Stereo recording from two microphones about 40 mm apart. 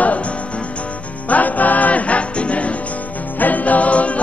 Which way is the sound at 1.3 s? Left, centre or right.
Left.